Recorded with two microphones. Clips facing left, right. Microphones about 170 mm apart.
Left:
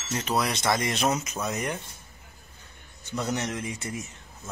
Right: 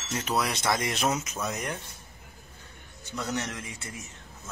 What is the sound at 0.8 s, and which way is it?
Speech, 5° right (ahead or behind).